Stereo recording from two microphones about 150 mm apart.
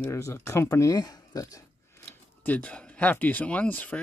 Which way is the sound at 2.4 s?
10° left (ahead or behind).